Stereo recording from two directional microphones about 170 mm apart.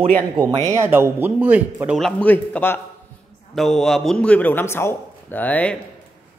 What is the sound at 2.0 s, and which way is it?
Speech, 5° left (ahead or behind).